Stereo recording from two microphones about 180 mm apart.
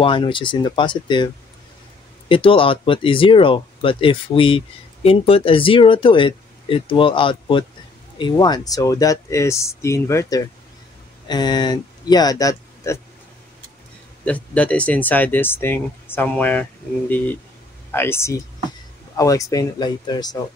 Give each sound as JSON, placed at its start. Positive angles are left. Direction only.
{"t": 0.0, "sound": "speech", "side_deg": 30}
{"t": 14.2, "sound": "speech", "side_deg": 5}
{"t": 17.9, "sound": "speech", "side_deg": 15}